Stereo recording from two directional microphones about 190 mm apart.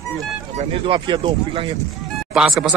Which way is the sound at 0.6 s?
30° right (ahead or behind).